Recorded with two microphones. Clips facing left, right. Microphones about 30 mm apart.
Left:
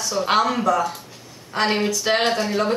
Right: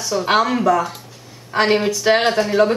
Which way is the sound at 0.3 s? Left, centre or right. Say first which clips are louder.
Right 3 dB; centre.